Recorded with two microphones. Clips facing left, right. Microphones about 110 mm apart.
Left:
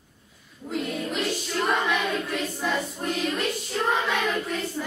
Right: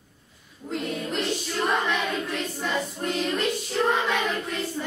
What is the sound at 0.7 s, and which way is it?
Music, centre (ahead or behind).